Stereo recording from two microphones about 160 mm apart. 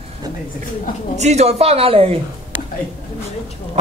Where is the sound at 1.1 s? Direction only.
45° right (ahead or behind).